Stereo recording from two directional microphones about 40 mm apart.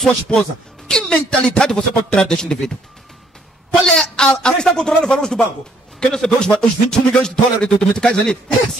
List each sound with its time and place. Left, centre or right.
0.0 s speech: centre
1.8 s speech: left
2.2 s a man's voice: centre
3.8 s speech: centre